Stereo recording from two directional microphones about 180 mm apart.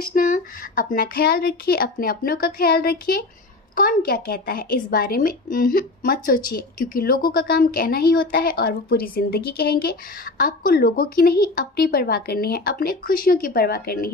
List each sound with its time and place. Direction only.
0.1 s a woman's voice: 50° left (ahead or behind)